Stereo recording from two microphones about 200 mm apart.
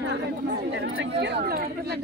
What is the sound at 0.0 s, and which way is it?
Chatter, 55° right (ahead or behind).